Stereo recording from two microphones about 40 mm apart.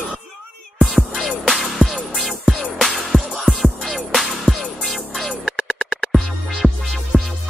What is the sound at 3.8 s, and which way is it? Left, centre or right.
Music, centre.